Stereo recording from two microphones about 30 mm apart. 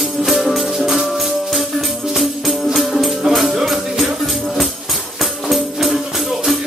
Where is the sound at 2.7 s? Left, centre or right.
Centre.